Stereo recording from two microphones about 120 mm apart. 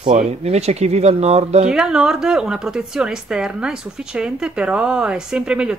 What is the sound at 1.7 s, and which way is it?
A woman's voice, 5° right (ahead or behind).